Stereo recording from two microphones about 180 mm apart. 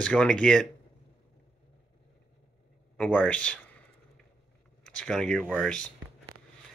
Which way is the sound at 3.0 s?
5° left (ahead or behind).